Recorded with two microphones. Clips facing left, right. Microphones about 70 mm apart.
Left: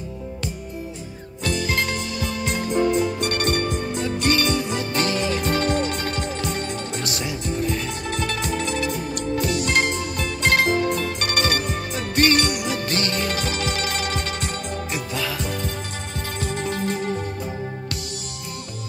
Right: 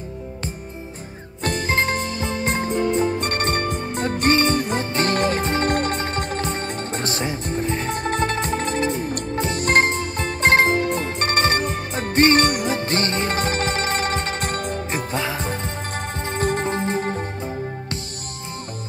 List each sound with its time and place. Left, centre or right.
1.4 s music: right
5.4 s music: right
5.7 s music: right
5.9 s music: right
6.2 s music: right